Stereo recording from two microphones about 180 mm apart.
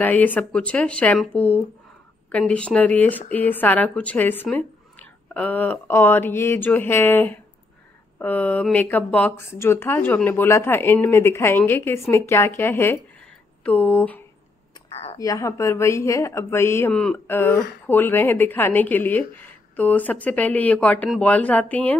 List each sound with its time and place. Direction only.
0.0 s speech: 10° left (ahead or behind)
14.9 s a sound: 35° left (ahead or behind)
15.1 s speech: 20° left (ahead or behind)